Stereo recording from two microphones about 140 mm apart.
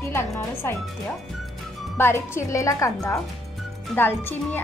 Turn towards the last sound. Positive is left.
turn(degrees=15)  # may be behind; listen again after turning